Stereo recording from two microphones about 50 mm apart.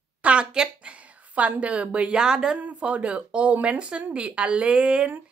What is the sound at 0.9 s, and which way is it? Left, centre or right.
A woman's voice, right.